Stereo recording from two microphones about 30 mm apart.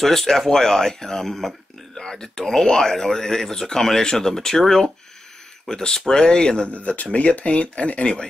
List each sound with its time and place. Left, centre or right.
0.0 s speech: centre
2.0 s speech: left
6.7 s speech: left